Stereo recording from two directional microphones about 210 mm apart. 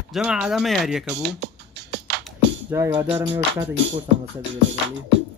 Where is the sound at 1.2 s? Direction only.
55° right (ahead or behind).